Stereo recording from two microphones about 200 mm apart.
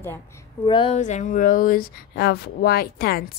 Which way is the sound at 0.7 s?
25° left (ahead or behind).